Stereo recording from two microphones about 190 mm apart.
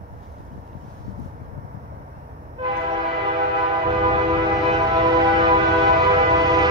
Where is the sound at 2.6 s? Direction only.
25° right (ahead or behind).